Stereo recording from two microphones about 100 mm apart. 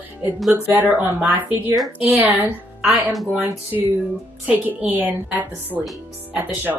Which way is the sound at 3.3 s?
15° right (ahead or behind).